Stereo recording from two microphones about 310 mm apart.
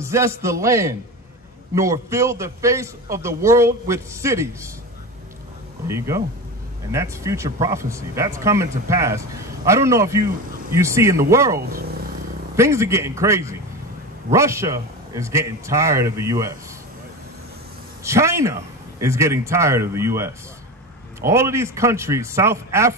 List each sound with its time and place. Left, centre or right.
0.0 s speech: centre
5.9 s speech: centre
11.6 s speech: right
12.5 s speech: centre
18.0 s speech: centre